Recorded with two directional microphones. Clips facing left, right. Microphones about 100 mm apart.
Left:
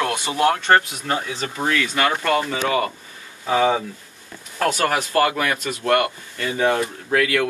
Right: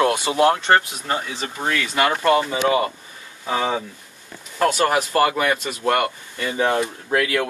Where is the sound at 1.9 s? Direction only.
15° right (ahead or behind).